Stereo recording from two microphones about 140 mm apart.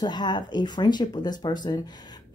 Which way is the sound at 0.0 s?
30° left (ahead or behind).